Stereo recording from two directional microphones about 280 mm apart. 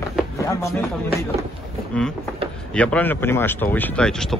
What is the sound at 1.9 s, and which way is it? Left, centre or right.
Speech, centre.